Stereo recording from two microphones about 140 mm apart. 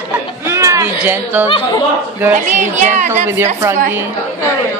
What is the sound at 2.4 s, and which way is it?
Speech, 60° right (ahead or behind).